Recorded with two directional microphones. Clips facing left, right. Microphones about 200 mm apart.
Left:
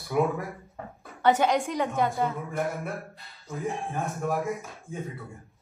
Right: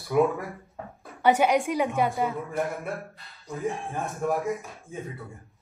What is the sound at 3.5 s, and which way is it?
Speech, 15° right (ahead or behind).